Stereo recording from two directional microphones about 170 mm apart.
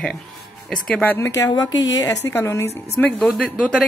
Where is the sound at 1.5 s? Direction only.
25° left (ahead or behind).